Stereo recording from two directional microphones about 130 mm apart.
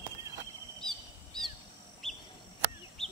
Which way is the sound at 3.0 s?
5° left (ahead or behind).